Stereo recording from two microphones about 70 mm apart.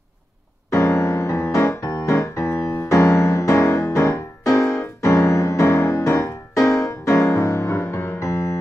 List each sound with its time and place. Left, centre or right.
0.7 s music: left